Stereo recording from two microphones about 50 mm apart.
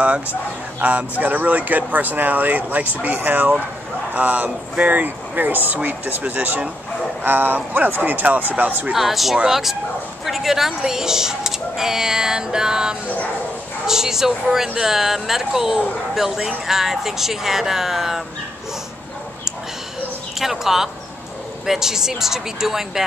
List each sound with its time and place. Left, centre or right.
0.7 s speech: right
8.9 s speech: centre
20.3 s a sound: centre
21.6 s speech: centre